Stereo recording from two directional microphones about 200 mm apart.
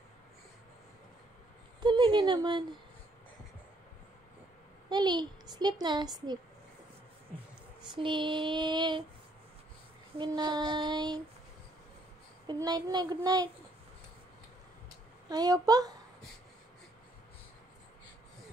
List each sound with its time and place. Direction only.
1.8 s female singing: 20° right (ahead or behind)
4.8 s a woman's voice: 20° right (ahead or behind)
7.8 s female singing: 25° right (ahead or behind)
10.1 s female singing: 20° right (ahead or behind)
12.4 s female singing: 20° right (ahead or behind)
15.2 s female singing: 20° right (ahead or behind)